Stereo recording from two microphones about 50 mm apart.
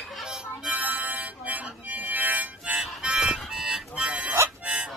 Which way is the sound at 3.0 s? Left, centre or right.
Centre.